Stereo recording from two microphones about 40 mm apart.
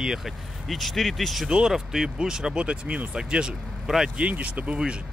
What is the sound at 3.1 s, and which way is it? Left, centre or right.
Speech, centre.